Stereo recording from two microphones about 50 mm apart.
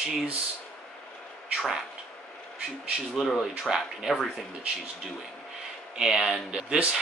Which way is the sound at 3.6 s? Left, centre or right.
Centre.